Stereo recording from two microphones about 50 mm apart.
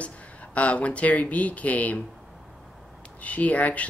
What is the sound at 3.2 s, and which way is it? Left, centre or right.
Speech, left.